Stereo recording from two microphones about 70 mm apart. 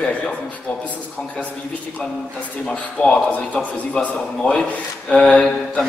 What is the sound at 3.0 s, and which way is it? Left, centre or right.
A man's voice, left.